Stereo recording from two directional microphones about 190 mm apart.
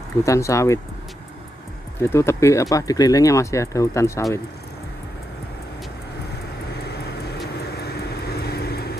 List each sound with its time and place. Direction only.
0.2 s speech: 15° left (ahead or behind)
2.0 s speech: 15° left (ahead or behind)
6.7 s vehicle: 60° left (ahead or behind)